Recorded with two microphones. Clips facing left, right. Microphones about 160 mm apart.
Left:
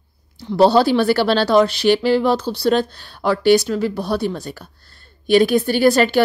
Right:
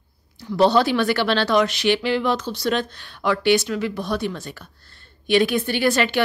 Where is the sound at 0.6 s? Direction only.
35° left (ahead or behind).